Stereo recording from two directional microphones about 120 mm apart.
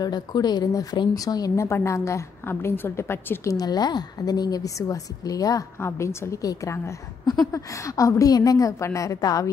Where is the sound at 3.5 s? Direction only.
35° left (ahead or behind).